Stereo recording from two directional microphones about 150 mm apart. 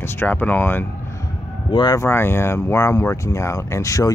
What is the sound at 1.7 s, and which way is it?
Speech, 25° left (ahead or behind).